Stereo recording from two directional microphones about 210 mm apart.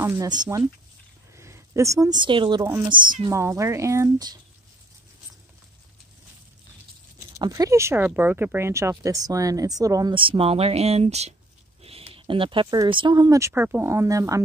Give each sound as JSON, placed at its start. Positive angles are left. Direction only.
{"t": 0.0, "sound": "speech", "side_deg": -15}
{"t": 7.3, "sound": "speech", "side_deg": -15}